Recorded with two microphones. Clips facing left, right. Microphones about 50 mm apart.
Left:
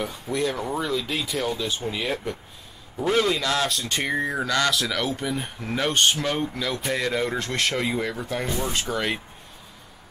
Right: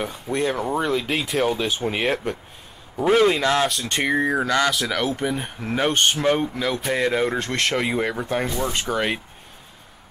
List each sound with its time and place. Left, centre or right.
0.3 s speech: right
0.7 s speech: right
3.0 s speech: right
3.8 s speech: right